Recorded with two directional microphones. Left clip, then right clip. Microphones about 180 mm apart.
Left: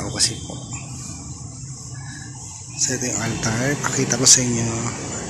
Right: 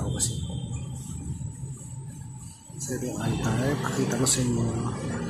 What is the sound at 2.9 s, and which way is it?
Speech, 25° left (ahead or behind).